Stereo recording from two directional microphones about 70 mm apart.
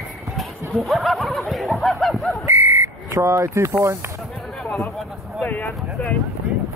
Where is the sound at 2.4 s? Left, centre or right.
Right.